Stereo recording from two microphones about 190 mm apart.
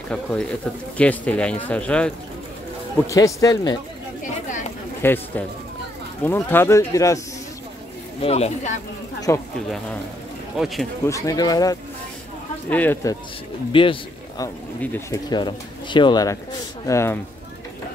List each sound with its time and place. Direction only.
0.1 s speech: 5° left (ahead or behind)
3.1 s speech: 15° left (ahead or behind)
5.0 s speech: 10° left (ahead or behind)
8.2 s speech: 35° left (ahead or behind)
9.3 s speech: 15° left (ahead or behind)
11.1 s speech: 15° left (ahead or behind)
12.6 s speech: 10° left (ahead or behind)
13.7 s speech: 25° left (ahead or behind)
14.8 s speech: 10° left (ahead or behind)